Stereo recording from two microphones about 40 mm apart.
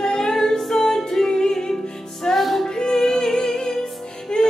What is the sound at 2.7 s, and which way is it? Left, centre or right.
Music, centre.